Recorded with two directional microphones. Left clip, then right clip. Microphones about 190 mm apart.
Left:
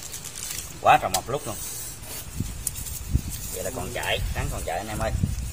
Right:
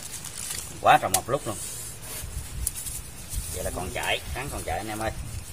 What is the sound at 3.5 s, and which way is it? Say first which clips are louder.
Speech: left 1 dB; 15° right (ahead or behind).